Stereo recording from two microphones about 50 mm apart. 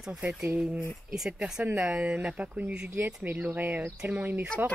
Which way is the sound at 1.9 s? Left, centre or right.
Right.